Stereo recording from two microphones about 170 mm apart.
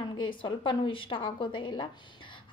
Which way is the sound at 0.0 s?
30° left (ahead or behind).